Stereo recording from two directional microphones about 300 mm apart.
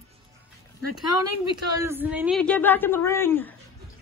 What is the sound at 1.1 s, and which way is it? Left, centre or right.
Speech, left.